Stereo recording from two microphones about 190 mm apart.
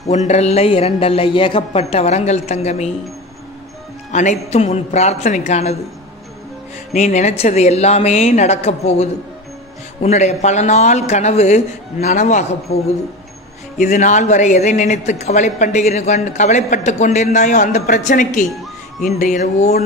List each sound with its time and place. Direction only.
0.0 s a woman's voice: 35° left (ahead or behind)
4.1 s a woman's voice: 40° left (ahead or behind)
6.9 s a woman's voice: 40° left (ahead or behind)
13.7 s a woman's voice: 40° left (ahead or behind)